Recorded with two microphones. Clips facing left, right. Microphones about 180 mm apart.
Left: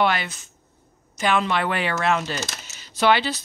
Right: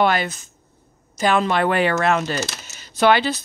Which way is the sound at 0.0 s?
45° right (ahead or behind).